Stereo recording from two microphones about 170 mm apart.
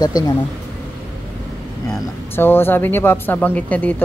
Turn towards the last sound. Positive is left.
turn(degrees=10)  # may be behind; listen again after turning